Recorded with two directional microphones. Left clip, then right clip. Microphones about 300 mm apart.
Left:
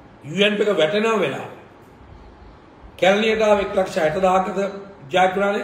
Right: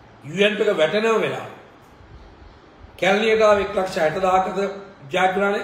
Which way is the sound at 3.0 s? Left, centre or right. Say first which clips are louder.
Even; centre.